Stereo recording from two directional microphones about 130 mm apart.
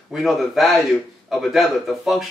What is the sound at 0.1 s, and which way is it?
A man's voice, centre (ahead or behind).